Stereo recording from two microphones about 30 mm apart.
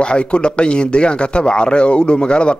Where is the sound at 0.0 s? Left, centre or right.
Left.